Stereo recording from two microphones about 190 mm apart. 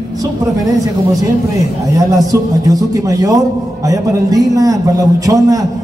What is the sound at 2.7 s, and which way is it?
A man's voice, 20° right (ahead or behind).